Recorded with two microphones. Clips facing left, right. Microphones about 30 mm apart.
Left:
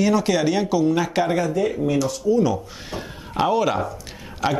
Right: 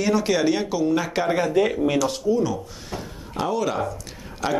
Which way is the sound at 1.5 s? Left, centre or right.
Right.